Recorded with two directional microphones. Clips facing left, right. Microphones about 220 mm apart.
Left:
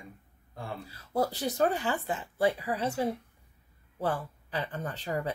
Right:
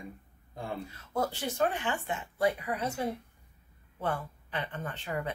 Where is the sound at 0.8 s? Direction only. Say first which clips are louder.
Left 4 dB; 35° left (ahead or behind).